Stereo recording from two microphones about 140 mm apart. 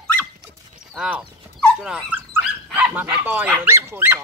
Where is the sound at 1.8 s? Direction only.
5° right (ahead or behind).